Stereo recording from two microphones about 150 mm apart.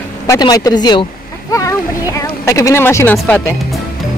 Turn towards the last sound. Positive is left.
turn(degrees=5)  # may be behind; listen again after turning